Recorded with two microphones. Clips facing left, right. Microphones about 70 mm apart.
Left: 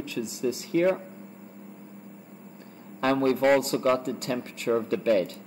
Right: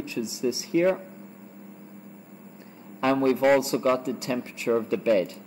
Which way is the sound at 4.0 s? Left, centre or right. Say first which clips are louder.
Right 1 dB; left.